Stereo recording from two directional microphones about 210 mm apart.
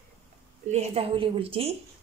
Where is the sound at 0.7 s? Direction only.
30° right (ahead or behind).